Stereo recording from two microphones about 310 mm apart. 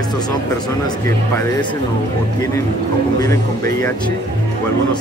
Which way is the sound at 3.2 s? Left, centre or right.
Centre.